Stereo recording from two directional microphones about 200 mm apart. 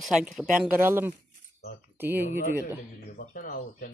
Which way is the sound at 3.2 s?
45° left (ahead or behind).